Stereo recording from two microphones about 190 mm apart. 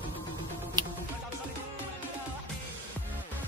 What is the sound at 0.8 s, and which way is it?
Music, 20° right (ahead or behind).